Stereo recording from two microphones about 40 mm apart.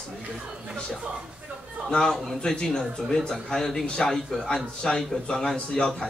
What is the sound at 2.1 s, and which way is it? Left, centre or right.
Speech, centre.